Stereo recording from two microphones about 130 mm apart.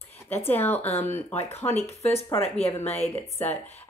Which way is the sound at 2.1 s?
15° left (ahead or behind).